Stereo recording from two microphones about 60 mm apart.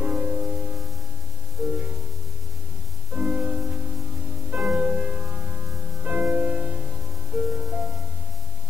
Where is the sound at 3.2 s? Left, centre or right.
Right.